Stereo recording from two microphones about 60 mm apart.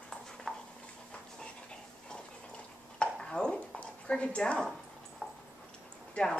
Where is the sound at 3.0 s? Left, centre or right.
Centre.